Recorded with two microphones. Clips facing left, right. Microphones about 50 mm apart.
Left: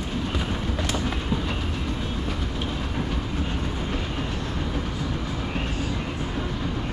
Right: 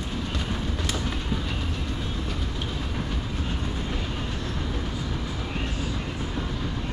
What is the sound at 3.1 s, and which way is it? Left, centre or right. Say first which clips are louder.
Train: left 3 dB; centre.